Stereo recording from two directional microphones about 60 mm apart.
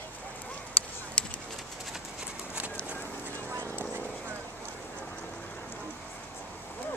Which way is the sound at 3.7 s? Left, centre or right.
Left.